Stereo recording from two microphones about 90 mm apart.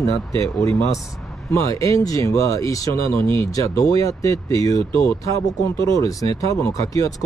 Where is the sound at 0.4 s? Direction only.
35° left (ahead or behind).